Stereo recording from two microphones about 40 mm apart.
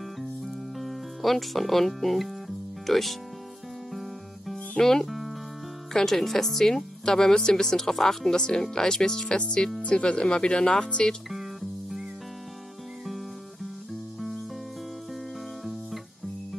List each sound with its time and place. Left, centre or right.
0.7 s speech: centre
4.7 s speech: centre
9.8 s speech: left